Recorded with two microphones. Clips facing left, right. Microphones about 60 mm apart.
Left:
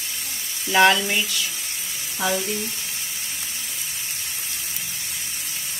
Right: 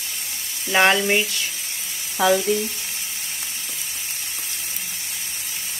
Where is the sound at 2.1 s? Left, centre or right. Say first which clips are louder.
Right 7 dB; right.